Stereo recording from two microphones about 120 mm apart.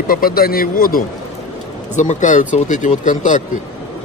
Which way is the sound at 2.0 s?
90° left.